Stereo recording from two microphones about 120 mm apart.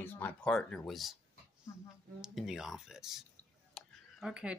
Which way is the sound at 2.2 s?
5° right (ahead or behind).